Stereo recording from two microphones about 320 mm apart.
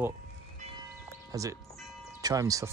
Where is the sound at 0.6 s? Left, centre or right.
Right.